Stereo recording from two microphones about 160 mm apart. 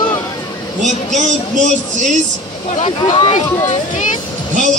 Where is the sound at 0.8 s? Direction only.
50° right (ahead or behind).